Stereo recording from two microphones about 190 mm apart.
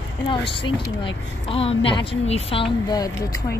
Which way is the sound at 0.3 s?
25° left (ahead or behind).